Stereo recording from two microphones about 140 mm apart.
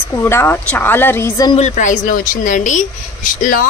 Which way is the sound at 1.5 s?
60° left (ahead or behind).